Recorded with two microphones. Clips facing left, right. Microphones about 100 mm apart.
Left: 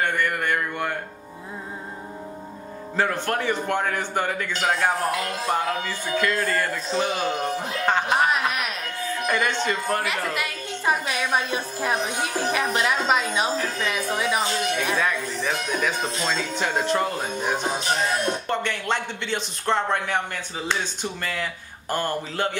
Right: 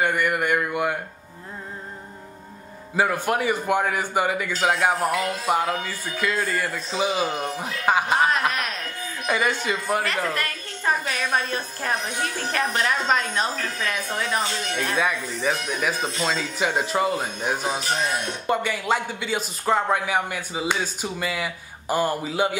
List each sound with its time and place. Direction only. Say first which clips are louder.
0.0 s a sound: right 2 dB; 10° right (ahead or behind)
3.0 s speech: right 2 dB; 10° right (ahead or behind)
9.3 s speech: right 1 dB; 10° right (ahead or behind)
10.0 s a woman's voice: right 1 dB; 5° left (ahead or behind)
15.0 s speech: even; 5° right (ahead or behind)